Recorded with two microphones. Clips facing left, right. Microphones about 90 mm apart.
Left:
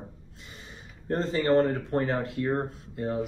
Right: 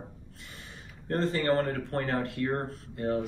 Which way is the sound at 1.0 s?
20° left (ahead or behind).